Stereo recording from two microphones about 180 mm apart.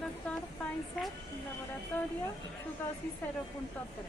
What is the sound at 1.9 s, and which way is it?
Speech, 5° left (ahead or behind).